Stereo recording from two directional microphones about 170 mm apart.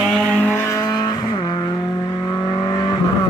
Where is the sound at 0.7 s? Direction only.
20° left (ahead or behind).